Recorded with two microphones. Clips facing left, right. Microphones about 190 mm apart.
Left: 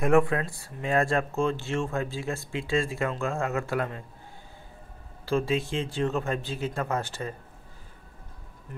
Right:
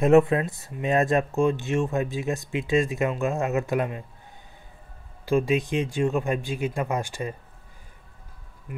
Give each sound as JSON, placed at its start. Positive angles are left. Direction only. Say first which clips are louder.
{"t": 0.0, "sound": "speech", "louder": "right 5 dB", "side_deg": -25}
{"t": 5.2, "sound": "speech", "louder": "right 4 dB", "side_deg": -15}